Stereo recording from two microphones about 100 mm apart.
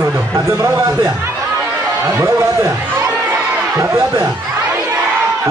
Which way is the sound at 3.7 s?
30° right (ahead or behind).